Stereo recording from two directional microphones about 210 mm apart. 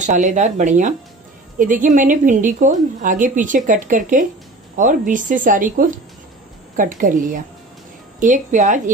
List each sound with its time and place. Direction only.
0.0 s a woman's voice: 35° right (ahead or behind)